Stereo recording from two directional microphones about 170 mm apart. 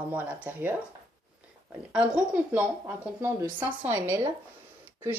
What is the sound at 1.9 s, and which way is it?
Speech, 5° right (ahead or behind).